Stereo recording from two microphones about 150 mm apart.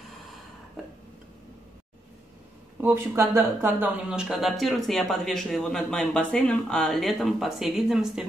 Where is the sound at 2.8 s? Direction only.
15° right (ahead or behind).